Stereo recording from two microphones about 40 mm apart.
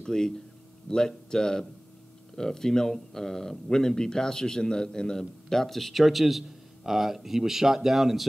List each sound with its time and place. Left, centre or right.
0.0 s speech: centre